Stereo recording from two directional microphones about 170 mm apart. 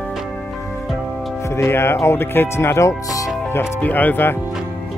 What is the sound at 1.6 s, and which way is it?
Speech, 15° left (ahead or behind).